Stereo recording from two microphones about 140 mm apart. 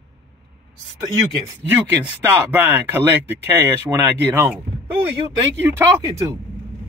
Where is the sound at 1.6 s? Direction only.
15° right (ahead or behind).